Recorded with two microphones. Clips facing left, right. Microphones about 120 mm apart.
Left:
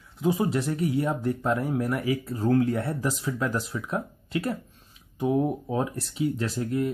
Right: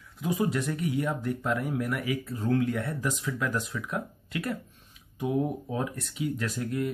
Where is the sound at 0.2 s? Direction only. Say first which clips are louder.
Left 3 dB; 30° left (ahead or behind).